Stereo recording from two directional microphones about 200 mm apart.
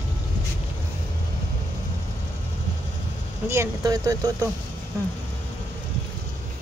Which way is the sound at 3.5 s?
15° right (ahead or behind).